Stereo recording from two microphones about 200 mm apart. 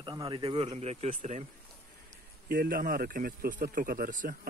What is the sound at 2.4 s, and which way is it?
A man's voice, 45° right (ahead or behind).